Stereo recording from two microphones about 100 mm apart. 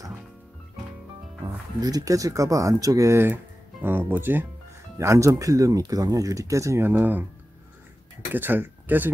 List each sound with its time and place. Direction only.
1.8 s speech: 35° right (ahead or behind); by 7.2 s 20° right (ahead or behind)
8.3 s speech: 20° right (ahead or behind)